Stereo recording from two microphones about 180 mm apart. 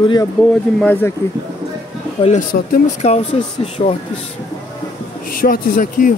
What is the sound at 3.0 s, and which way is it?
Speech, 40° left (ahead or behind).